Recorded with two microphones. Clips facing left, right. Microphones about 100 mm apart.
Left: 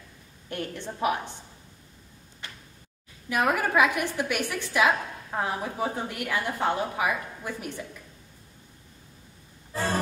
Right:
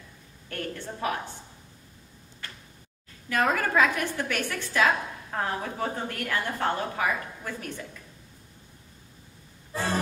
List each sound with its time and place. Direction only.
0.5 s a woman's voice: 20° left (ahead or behind)
2.4 s a sound: 15° left (ahead or behind)
3.3 s a woman's voice: 15° left (ahead or behind)